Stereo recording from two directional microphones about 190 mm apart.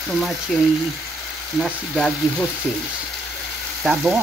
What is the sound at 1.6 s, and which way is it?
Speech, centre (ahead or behind).